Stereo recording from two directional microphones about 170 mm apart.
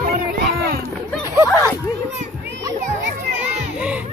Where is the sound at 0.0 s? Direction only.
55° right (ahead or behind).